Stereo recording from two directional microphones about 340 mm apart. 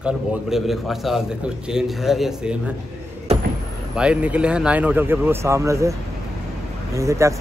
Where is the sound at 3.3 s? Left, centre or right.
Centre.